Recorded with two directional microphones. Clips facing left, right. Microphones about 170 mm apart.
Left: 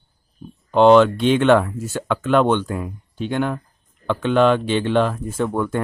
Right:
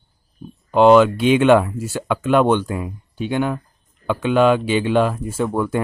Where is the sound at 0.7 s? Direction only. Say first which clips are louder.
Even; 5° right (ahead or behind).